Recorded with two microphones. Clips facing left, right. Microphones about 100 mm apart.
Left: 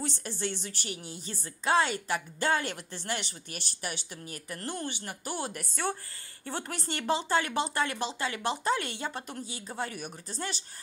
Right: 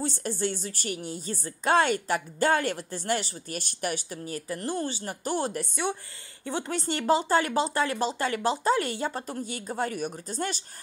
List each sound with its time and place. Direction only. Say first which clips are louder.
0.0 s a woman's voice: right 5 dB; 40° right (ahead or behind)
4.5 s speech: right 6 dB; 25° right (ahead or behind)
5.0 s speech: right 6 dB; 40° right (ahead or behind)
5.6 s speech: right 3 dB; 20° right (ahead or behind)
6.7 s a woman's voice: right 6 dB; 35° right (ahead or behind)